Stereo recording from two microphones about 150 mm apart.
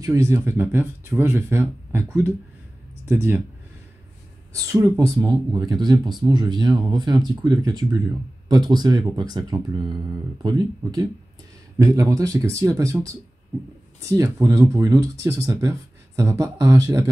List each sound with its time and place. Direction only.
0.0 s speech: 20° right (ahead or behind)
4.7 s speech: 20° right (ahead or behind)